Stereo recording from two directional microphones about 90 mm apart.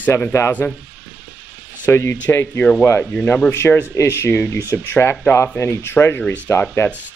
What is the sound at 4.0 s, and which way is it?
Speech, 30° left (ahead or behind).